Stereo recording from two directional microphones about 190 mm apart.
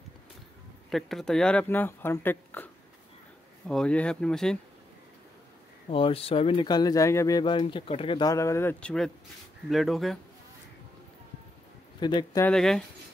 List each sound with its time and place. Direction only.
0.8 s speech: centre (ahead or behind)
5.9 s speech: 30° left (ahead or behind); by 10.1 s centre (ahead or behind)
12.0 s speech: 25° left (ahead or behind)
12.4 s speech: 5° left (ahead or behind)